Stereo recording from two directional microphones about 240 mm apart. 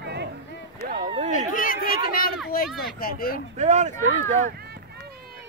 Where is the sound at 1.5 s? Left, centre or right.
Left.